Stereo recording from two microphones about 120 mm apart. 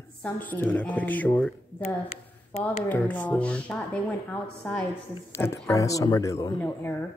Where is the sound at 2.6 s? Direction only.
10° left (ahead or behind).